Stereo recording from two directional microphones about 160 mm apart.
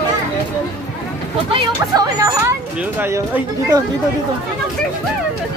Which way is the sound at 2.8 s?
10° right (ahead or behind).